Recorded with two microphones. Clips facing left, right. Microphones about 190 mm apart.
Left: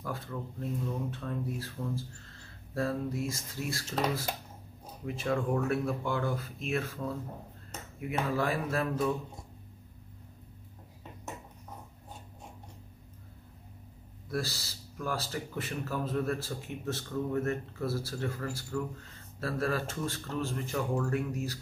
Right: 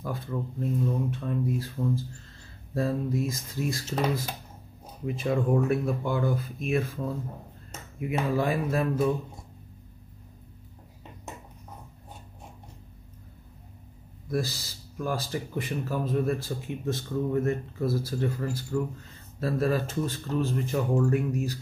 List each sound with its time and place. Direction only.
0.0 s speech: 20° right (ahead or behind)
8.0 s speech: 15° right (ahead or behind)
14.3 s speech: 15° right (ahead or behind)